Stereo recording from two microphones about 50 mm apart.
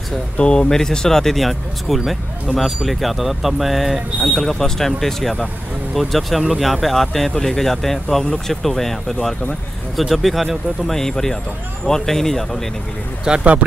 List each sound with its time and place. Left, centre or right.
0.4 s speech: centre
13.2 s speech: centre